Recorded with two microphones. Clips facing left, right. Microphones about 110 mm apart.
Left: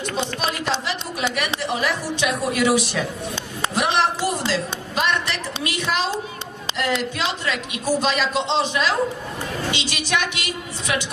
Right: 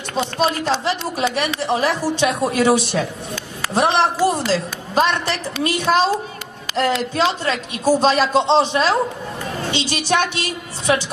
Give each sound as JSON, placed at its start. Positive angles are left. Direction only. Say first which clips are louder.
{"t": 0.1, "sound": "a woman's voice", "louder": "right 8 dB", "side_deg": -35}
{"t": 6.7, "sound": "a sound", "louder": "right 6 dB", "side_deg": 25}
{"t": 7.2, "sound": "speech", "louder": "right 6 dB", "side_deg": -30}